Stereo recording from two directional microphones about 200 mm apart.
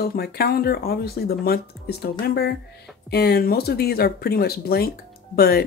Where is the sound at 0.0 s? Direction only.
50° left (ahead or behind).